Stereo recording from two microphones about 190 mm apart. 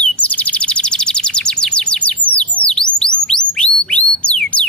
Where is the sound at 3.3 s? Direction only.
5° left (ahead or behind).